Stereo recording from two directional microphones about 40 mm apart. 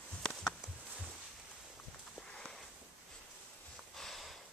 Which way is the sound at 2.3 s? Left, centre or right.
Centre.